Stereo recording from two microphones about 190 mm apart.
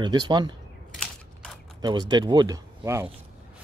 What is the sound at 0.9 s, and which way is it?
Typewriter, 5° left (ahead or behind).